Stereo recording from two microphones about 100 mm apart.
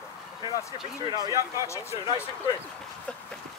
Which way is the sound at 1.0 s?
40° right (ahead or behind).